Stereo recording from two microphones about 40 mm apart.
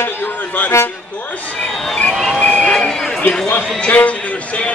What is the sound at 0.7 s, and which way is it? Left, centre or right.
Speech, left.